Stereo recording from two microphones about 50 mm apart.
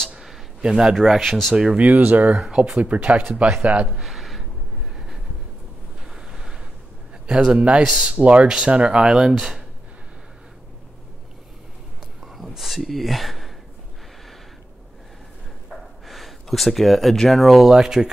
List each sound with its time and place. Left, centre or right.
0.6 s speech: centre
0.9 s speech: centre
1.8 s speech: right
2.5 s speech: centre
3.2 s speech: right
4.0 s a sound: centre
7.2 s speech: centre
12.3 s speech: centre
15.7 s a sound: centre
17.6 s speech: centre